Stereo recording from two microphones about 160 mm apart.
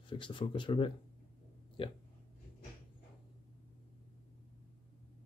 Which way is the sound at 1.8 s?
35° left (ahead or behind).